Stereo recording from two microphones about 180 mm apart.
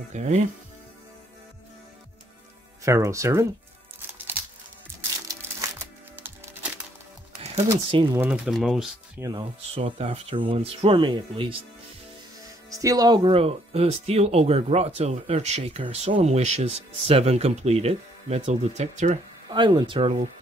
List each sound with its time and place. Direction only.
0.1 s speech: 40° right (ahead or behind)
2.8 s speech: 15° right (ahead or behind)
6.2 s music: 10° right (ahead or behind)
7.9 s speech: 25° right (ahead or behind)
8.2 s speech: 5° right (ahead or behind)
9.2 s speech: 25° right (ahead or behind)
9.6 s speech: 35° right (ahead or behind)
12.6 s speech: 20° right (ahead or behind); by 19.1 s 40° right (ahead or behind)
19.5 s speech: 25° right (ahead or behind)